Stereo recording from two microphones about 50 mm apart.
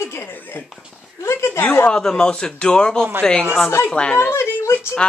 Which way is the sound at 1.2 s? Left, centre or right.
Left.